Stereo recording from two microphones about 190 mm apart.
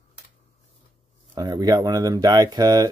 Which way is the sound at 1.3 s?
20° right (ahead or behind).